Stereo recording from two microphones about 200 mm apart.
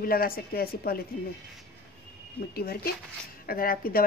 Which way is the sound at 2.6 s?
50° left (ahead or behind).